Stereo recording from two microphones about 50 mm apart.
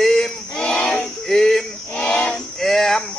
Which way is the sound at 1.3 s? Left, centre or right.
Centre.